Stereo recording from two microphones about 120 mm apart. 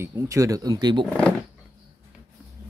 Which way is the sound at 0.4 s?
30° right (ahead or behind).